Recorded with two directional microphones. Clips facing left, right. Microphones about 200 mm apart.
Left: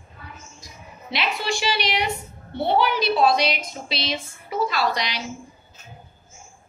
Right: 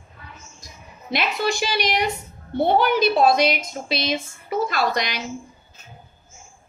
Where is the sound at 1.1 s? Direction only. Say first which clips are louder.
Right 3 dB; 45° right (ahead or behind).